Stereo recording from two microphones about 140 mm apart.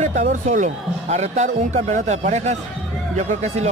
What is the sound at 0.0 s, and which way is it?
Speech, 60° right (ahead or behind).